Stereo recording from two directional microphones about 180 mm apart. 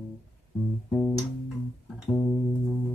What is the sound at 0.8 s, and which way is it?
Music, 5° left (ahead or behind).